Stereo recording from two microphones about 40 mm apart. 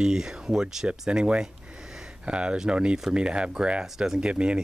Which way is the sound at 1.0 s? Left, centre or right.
Right.